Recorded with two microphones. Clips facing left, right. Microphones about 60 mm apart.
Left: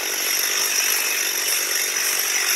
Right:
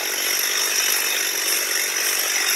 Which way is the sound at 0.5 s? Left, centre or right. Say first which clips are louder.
Right 1 dB; right.